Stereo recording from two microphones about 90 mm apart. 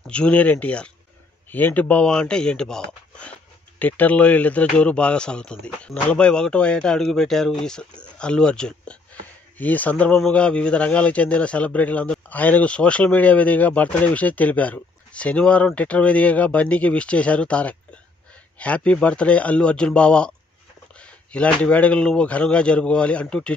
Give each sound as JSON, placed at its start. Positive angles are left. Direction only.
{"t": 0.0, "sound": "a man's voice", "side_deg": 10}
{"t": 3.8, "sound": "a man's voice", "side_deg": 20}